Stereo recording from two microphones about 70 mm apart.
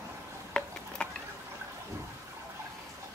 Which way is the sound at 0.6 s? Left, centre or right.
Centre.